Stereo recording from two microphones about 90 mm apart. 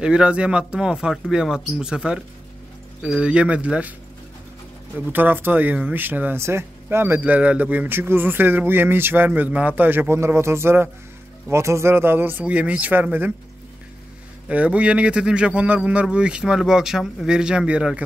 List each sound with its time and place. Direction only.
0.0 s speech: 10° right (ahead or behind)
4.9 s speech: 20° right (ahead or behind)
14.5 s speech: 15° right (ahead or behind)